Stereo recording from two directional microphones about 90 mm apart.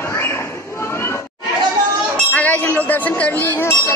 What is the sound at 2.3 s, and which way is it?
Speech, 20° left (ahead or behind).